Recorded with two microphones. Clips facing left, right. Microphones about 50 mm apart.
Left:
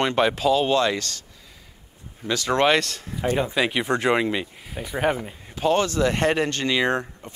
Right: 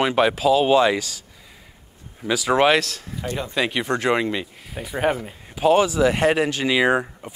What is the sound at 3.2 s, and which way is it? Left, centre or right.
Speech, left.